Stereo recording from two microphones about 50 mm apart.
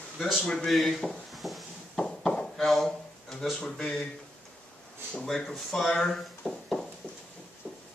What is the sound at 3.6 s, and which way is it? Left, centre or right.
Speech, centre.